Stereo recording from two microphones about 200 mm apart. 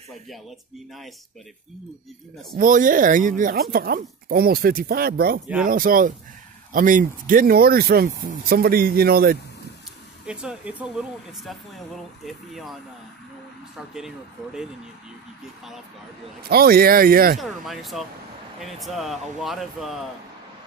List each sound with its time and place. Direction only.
0.3 s speech: centre (ahead or behind)
2.5 s speech: 40° right (ahead or behind)
10.2 s speech: 5° right (ahead or behind)
13.7 s speech: centre (ahead or behind)
16.4 s speech: 50° right (ahead or behind)
17.4 s speech: centre (ahead or behind)